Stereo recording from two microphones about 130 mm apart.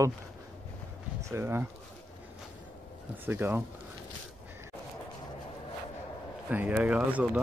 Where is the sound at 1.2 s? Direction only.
20° right (ahead or behind).